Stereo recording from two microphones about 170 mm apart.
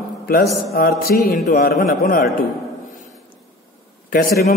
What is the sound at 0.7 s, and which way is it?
A man's voice, 60° left (ahead or behind).